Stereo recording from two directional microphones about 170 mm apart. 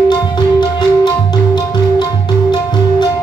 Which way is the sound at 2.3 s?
25° left (ahead or behind).